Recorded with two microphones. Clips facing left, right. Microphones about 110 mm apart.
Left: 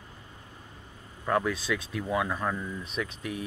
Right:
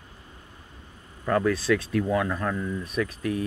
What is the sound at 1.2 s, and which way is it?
Speech, 15° left (ahead or behind).